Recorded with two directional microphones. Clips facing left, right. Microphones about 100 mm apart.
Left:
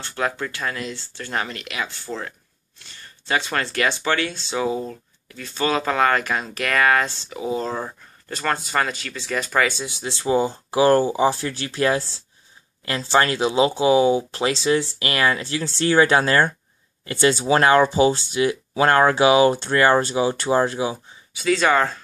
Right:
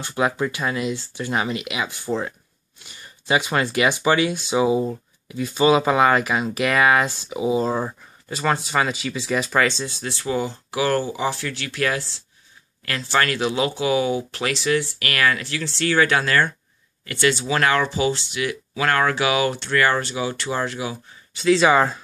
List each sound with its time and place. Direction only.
0.0 s speech: 15° right (ahead or behind); by 21.0 s 30° left (ahead or behind)
21.4 s speech: centre (ahead or behind)